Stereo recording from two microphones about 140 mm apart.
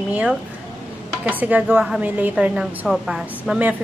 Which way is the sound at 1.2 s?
10° right (ahead or behind).